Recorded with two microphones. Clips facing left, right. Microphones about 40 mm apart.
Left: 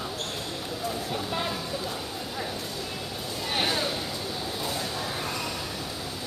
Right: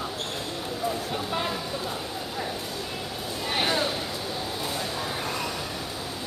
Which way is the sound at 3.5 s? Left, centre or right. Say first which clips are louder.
Right 2 dB; centre.